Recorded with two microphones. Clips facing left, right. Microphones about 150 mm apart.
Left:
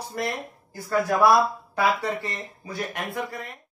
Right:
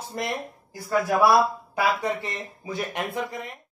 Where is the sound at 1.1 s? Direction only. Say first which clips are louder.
Even; 5° right (ahead or behind).